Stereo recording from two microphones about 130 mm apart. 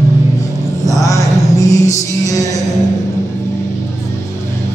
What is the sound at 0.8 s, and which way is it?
Music, 25° left (ahead or behind).